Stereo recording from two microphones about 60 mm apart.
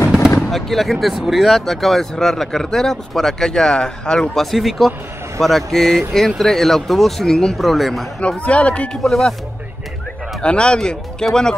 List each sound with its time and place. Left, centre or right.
0.5 s speech: centre
8.2 s speech: left
9.0 s speech: centre
10.4 s speech: centre